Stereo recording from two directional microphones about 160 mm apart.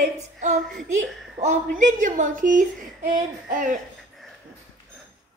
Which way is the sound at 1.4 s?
55° right (ahead or behind).